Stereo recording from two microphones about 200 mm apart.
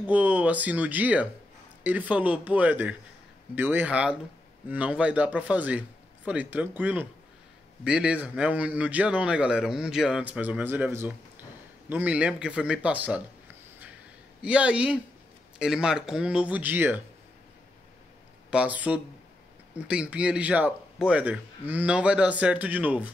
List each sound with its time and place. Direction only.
0.0 s a man's voice: 5° right (ahead or behind)
14.4 s a man's voice: 5° right (ahead or behind)
18.5 s a man's voice: 5° right (ahead or behind)